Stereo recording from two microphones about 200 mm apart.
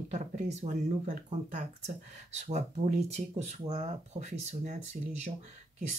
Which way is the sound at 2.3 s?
35° right (ahead or behind).